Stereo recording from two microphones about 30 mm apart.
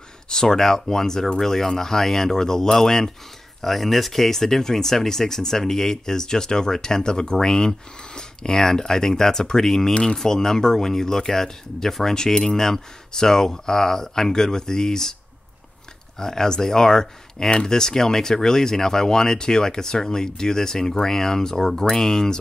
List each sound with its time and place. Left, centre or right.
0.3 s speech: centre
3.6 s speech: centre
16.2 s speech: centre